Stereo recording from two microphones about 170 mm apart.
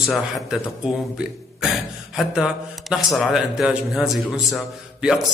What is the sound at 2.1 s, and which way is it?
Speech, centre (ahead or behind).